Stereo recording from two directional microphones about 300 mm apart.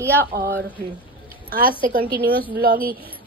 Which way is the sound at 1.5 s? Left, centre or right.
Right.